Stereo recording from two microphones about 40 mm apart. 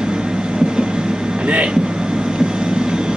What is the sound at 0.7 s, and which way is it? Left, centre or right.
Train, centre.